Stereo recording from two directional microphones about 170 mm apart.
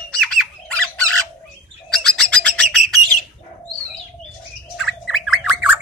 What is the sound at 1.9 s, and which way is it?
Bird, 5° left (ahead or behind).